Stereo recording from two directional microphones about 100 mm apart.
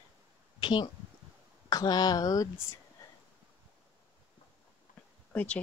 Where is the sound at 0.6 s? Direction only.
50° left (ahead or behind).